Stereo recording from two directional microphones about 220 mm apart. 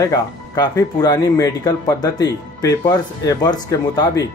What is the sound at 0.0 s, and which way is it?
Speech, 15° left (ahead or behind).